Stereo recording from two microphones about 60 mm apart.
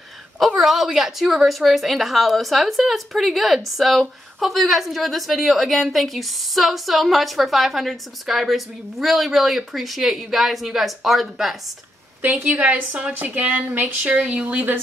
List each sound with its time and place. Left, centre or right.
0.6 s a woman's voice: centre
12.4 s a woman's voice: right